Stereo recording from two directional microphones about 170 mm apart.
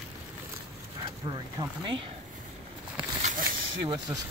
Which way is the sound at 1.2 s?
25° right (ahead or behind).